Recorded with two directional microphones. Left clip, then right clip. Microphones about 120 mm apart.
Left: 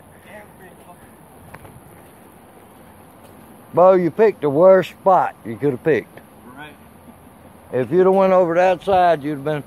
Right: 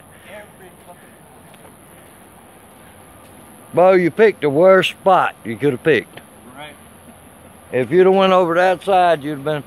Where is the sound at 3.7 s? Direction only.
30° right (ahead or behind).